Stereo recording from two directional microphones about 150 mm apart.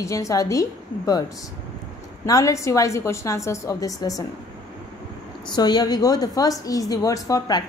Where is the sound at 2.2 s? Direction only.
20° left (ahead or behind).